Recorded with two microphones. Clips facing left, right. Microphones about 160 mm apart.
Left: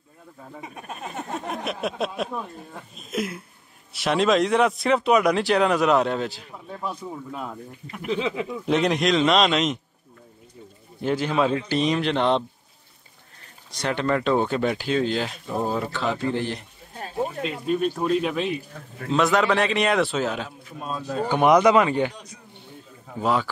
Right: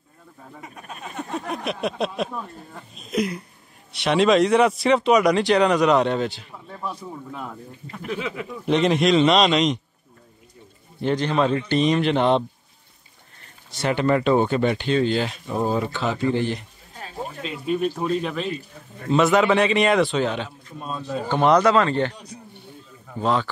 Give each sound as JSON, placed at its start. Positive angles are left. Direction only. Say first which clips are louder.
{"t": 1.5, "sound": "speech", "louder": "right 2 dB", "side_deg": 0}
{"t": 8.1, "sound": "speech", "louder": "left 3 dB", "side_deg": 25}
{"t": 8.6, "sound": "speech", "louder": "right 3 dB", "side_deg": 0}
{"t": 11.0, "sound": "speech", "louder": "right 1 dB", "side_deg": 5}
{"t": 13.7, "sound": "speech", "louder": "right 3 dB", "side_deg": -5}
{"t": 18.3, "sound": "speech", "louder": "left 2 dB", "side_deg": 15}
{"t": 19.0, "sound": "speech", "louder": "right 3 dB", "side_deg": 0}
{"t": 21.3, "sound": "speech", "louder": "even", "side_deg": 10}
{"t": 23.1, "sound": "speech", "louder": "right 1 dB", "side_deg": 10}